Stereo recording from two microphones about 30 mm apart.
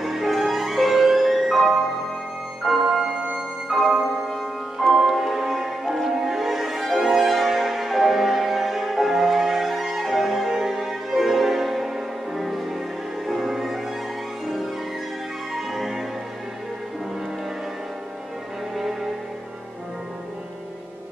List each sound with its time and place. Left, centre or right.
0.0 s music: centre
3.0 s music: right
3.3 s music: centre
15.5 s music: centre